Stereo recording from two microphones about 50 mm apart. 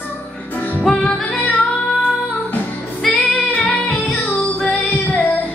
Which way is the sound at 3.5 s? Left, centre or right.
Left.